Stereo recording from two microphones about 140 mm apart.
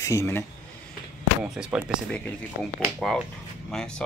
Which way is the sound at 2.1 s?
5° left (ahead or behind).